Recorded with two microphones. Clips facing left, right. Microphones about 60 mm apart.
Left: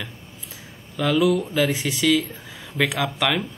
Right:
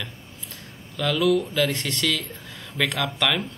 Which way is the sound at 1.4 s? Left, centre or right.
Left.